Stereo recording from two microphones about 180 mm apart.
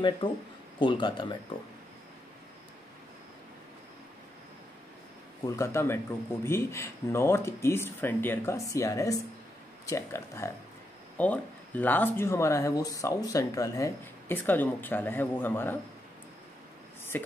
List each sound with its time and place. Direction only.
0.2 s speech: 25° left (ahead or behind)
5.4 s speech: 15° left (ahead or behind)
17.1 s speech: 10° left (ahead or behind)